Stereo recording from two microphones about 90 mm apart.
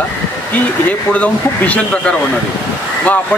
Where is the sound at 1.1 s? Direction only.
15° left (ahead or behind).